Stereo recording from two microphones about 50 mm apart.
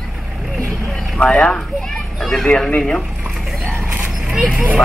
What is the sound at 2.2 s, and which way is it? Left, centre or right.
Speech, centre.